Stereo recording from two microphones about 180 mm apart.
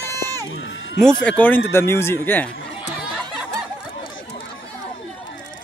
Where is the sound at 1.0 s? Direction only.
5° left (ahead or behind).